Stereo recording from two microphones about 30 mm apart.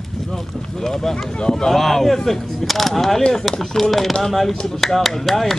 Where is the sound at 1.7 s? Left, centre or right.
Centre.